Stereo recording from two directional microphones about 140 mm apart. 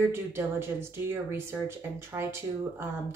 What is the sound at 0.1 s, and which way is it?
Speech, 20° right (ahead or behind).